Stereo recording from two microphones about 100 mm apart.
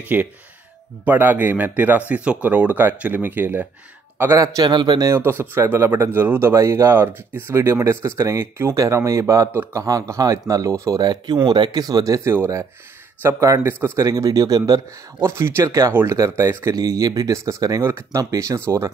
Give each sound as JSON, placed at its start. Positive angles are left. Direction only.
{"t": 0.1, "sound": "a man's voice", "side_deg": -20}
{"t": 4.4, "sound": "a man's voice", "side_deg": -40}
{"t": 11.4, "sound": "speech", "side_deg": -45}
{"t": 15.1, "sound": "a man's voice", "side_deg": -25}
{"t": 16.7, "sound": "speech", "side_deg": -35}